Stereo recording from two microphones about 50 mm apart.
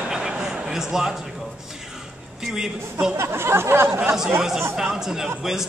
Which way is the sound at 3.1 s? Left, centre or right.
Right.